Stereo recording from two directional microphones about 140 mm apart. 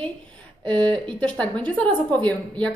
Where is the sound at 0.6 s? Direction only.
10° left (ahead or behind).